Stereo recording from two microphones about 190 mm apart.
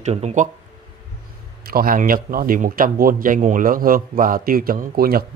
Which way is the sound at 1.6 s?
50° right (ahead or behind).